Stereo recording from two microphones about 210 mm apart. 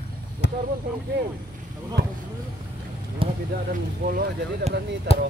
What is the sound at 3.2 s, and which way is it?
Speech, 25° right (ahead or behind).